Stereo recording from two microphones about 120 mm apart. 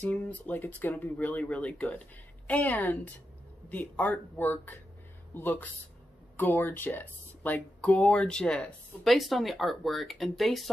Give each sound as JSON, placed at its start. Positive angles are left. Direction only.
{"t": 0.0, "sound": "speech", "side_deg": 10}